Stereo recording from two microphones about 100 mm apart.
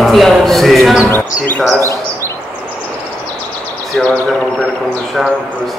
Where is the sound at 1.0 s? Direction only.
20° left (ahead or behind).